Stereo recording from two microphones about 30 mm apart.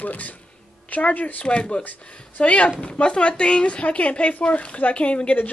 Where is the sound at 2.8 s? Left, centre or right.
Left.